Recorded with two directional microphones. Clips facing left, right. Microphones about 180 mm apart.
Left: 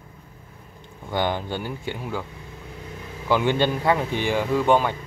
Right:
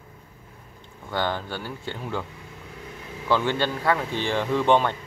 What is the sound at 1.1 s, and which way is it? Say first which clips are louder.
A man's voice: left 3 dB; 15° left (ahead or behind).